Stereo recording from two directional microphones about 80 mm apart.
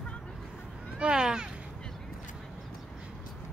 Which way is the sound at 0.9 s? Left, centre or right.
Centre.